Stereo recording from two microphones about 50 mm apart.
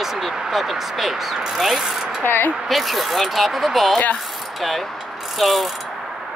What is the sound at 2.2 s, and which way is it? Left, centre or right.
Speech, left.